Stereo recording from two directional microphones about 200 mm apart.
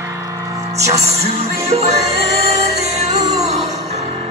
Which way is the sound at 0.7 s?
30° right (ahead or behind).